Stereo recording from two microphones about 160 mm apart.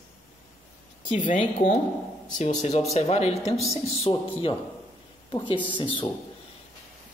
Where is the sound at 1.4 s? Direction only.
35° left (ahead or behind).